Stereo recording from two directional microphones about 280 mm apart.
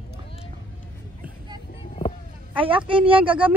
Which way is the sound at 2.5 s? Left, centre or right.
Centre.